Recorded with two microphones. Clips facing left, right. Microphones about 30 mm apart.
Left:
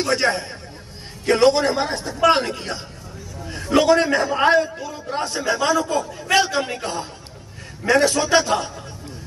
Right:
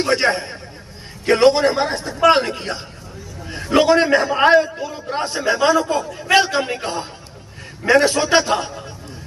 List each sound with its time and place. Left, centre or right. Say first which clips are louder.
0.0 s a man's voice: right 2 dB; right